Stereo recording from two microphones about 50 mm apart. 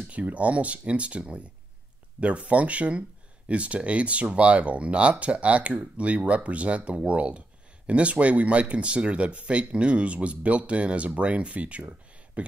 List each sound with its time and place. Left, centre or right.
0.1 s speech: right